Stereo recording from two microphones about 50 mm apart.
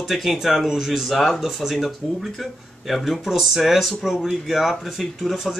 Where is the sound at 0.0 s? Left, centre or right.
Centre.